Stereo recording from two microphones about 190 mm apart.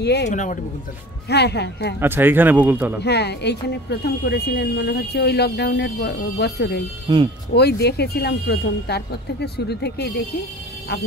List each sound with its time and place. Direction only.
0.0 s speech: 60° left (ahead or behind)
0.3 s speech: 40° left (ahead or behind)
1.3 s speech: 60° left (ahead or behind)
2.0 s speech: 10° right (ahead or behind)
3.0 s speech: 60° left (ahead or behind)
7.1 s speech: 25° right (ahead or behind)
7.5 s speech: 60° left (ahead or behind)